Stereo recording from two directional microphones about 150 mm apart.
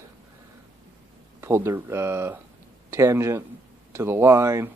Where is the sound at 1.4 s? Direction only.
15° right (ahead or behind).